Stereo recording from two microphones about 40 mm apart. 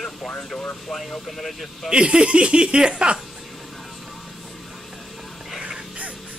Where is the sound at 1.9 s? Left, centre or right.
Right.